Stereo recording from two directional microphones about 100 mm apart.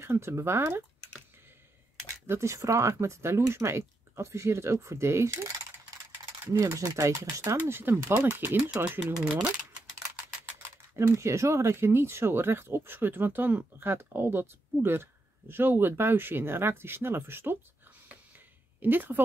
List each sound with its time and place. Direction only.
0.0 s speech: 25° right (ahead or behind)
2.2 s speech: 25° right (ahead or behind)
6.4 s speech: 30° right (ahead or behind)
11.0 s speech: 30° right (ahead or behind)
18.8 s speech: 20° right (ahead or behind)